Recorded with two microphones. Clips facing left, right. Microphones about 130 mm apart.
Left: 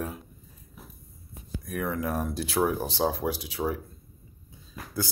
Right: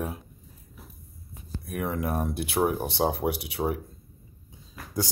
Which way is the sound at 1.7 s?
10° right (ahead or behind).